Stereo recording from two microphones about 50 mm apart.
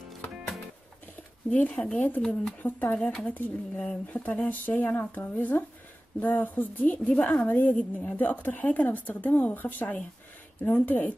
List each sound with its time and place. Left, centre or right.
1.5 s a woman's voice: left
3.7 s a woman's voice: left